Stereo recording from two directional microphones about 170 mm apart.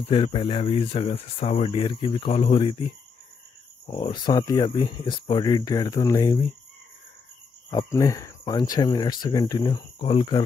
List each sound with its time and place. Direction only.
0.1 s speech: 30° left (ahead or behind)
7.7 s speech: 20° left (ahead or behind)